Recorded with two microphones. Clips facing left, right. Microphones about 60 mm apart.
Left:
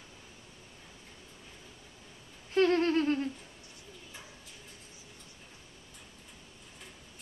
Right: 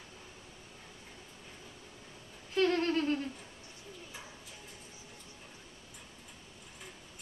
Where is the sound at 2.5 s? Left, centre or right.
Left.